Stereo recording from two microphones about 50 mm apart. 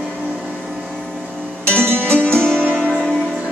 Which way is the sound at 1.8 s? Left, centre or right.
Right.